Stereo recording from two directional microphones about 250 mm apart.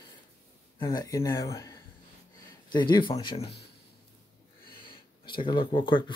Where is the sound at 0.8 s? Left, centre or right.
Centre.